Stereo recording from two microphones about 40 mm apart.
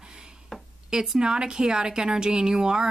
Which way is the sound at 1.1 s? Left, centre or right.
Centre.